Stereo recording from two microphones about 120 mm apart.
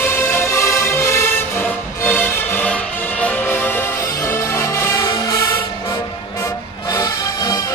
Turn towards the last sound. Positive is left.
turn(degrees=30)  # may be behind; listen again after turning